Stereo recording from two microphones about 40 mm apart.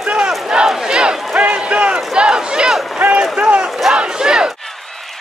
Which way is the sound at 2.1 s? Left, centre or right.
Centre.